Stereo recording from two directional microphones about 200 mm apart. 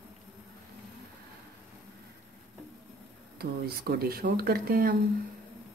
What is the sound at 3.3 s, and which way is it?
Speech, 50° right (ahead or behind).